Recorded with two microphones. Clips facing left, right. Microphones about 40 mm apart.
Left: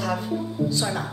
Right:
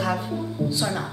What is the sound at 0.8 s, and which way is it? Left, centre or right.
Speech, centre.